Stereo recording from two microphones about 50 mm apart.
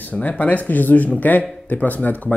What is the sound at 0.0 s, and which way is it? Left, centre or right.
A man's voice, left.